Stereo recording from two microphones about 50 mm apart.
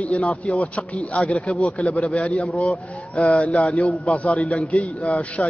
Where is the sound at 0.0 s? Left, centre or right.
Left.